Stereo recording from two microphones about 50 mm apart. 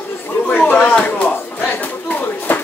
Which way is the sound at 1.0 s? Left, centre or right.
Left.